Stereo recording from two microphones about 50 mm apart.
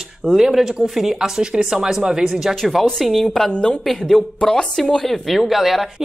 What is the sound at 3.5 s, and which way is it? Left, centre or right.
Speech, centre.